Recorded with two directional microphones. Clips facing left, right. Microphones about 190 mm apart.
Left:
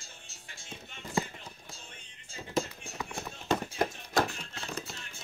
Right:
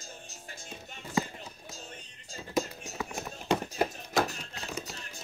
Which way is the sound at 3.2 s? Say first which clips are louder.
Right 1 dB; 10° right (ahead or behind).